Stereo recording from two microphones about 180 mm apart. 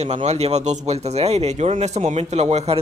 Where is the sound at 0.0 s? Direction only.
35° right (ahead or behind).